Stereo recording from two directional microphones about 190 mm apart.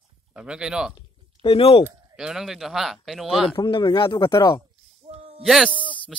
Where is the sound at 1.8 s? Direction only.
20° right (ahead or behind).